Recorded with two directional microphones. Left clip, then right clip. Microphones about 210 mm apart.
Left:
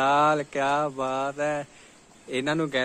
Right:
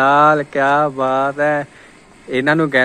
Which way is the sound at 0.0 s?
10° left (ahead or behind).